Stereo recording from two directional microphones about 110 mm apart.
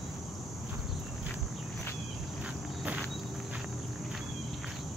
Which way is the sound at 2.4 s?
5° right (ahead or behind).